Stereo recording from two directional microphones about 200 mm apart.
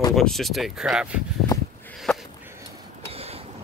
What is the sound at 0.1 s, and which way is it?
Speech, centre (ahead or behind).